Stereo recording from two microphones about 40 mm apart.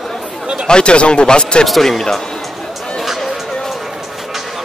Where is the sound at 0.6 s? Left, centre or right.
Left.